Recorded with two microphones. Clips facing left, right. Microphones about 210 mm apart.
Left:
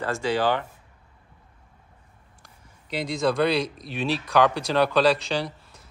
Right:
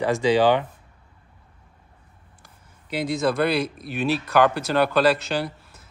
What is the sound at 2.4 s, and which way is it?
Speech, 5° right (ahead or behind).